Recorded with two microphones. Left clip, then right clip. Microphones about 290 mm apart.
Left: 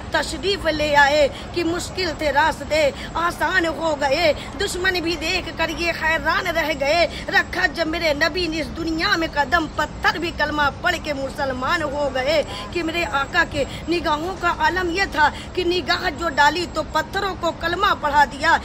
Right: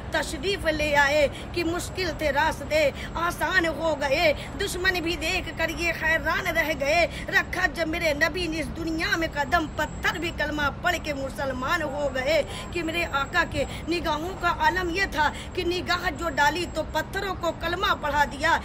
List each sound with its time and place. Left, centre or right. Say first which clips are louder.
0.1 s speech: left 5 dB; centre